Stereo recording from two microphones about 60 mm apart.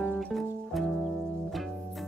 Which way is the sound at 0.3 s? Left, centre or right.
Centre.